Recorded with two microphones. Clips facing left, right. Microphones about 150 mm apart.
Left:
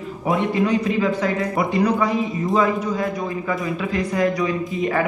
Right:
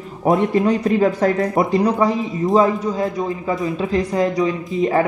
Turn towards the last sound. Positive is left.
turn(degrees=-30)  # may be behind; listen again after turning